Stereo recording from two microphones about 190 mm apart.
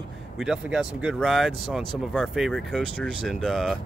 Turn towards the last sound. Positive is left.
turn(degrees=0)  # may be behind; listen again after turning